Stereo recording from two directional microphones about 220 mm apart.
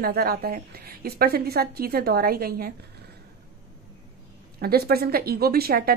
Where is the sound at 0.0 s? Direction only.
45° right (ahead or behind).